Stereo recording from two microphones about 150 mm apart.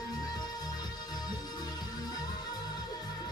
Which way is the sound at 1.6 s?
25° left (ahead or behind).